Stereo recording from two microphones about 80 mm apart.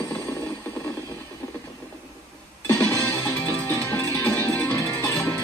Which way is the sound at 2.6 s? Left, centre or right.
Left.